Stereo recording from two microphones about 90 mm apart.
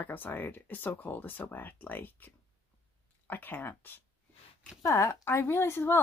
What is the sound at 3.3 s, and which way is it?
Speech, 20° left (ahead or behind).